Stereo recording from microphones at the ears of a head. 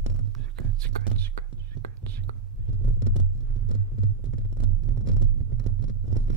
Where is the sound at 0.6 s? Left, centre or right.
Right.